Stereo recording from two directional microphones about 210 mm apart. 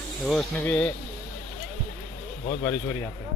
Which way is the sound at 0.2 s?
Centre (ahead or behind).